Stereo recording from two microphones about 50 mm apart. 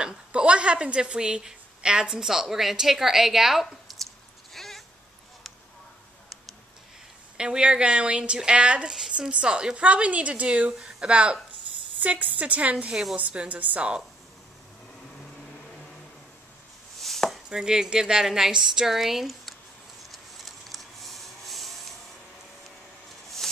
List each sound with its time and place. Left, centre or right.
0.0 s a woman's voice: right; by 3.9 s centre
4.6 s cat: centre
7.3 s a woman's voice: centre
12.0 s a woman's voice: right
17.0 s chopping: centre
17.5 s a woman's voice: centre
20.1 s printer: centre
23.4 s music: centre